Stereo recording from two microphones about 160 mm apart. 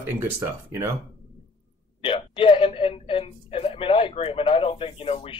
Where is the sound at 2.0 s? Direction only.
35° left (ahead or behind).